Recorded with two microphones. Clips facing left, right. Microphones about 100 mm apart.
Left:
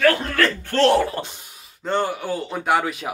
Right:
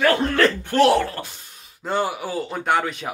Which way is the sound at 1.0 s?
15° left (ahead or behind).